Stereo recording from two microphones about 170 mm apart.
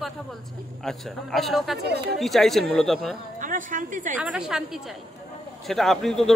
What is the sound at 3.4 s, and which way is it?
Speech, 50° right (ahead or behind).